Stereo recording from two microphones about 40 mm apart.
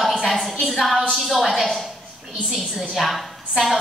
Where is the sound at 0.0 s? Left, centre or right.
Centre.